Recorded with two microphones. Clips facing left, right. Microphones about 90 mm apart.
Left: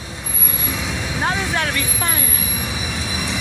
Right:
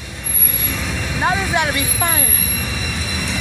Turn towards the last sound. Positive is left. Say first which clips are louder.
# even
turn(degrees=10)  # may be behind; listen again after turning